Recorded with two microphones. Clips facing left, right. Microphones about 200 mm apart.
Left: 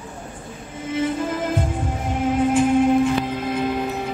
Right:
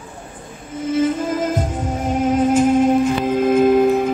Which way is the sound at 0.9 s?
40° right (ahead or behind).